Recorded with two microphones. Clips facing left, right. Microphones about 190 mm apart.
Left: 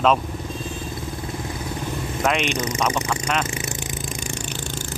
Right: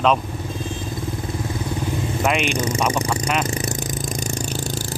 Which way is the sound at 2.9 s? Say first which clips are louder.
Right 2 dB; 35° right (ahead or behind).